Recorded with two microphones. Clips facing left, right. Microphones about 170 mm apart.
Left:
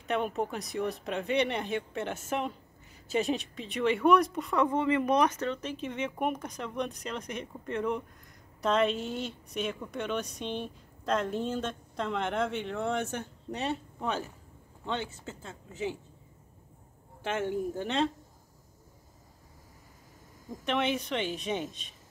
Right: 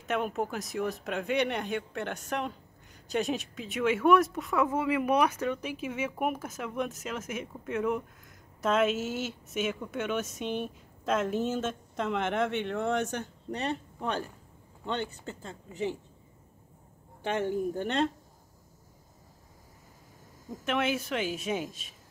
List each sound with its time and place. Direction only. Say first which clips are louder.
0.0 s speech: even; centre (ahead or behind)
17.2 s speech: right 2 dB; 5° left (ahead or behind)
20.6 s speech: even; 5° right (ahead or behind)